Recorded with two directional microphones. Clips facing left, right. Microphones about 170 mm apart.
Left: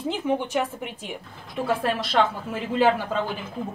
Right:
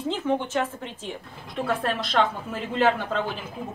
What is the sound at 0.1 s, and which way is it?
A woman's voice, 10° left (ahead or behind).